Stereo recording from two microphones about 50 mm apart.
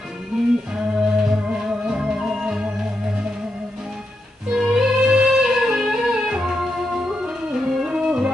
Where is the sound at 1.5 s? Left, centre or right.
Centre.